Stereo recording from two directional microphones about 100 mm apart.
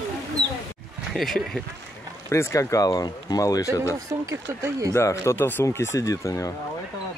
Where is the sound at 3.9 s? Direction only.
30° right (ahead or behind).